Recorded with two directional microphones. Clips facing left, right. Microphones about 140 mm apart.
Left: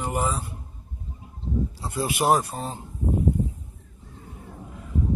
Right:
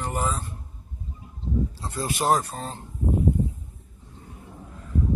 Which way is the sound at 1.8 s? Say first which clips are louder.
Left 2 dB; 10° left (ahead or behind).